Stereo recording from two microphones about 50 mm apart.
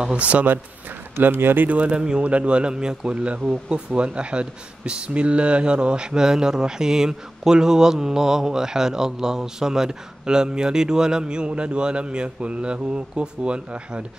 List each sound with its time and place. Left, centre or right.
0.0 s speech: right
1.2 s speech: right
1.7 s speech: right